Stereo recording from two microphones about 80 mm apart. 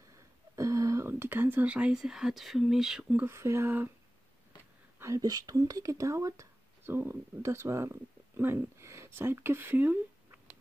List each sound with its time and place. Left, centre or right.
0.6 s a sound: right
1.0 s speech: right; by 3.1 s centre
3.3 s speech: right
4.9 s speech: right